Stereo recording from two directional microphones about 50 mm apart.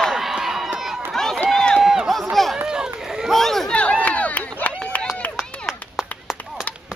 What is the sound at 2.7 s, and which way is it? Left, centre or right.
Run, centre.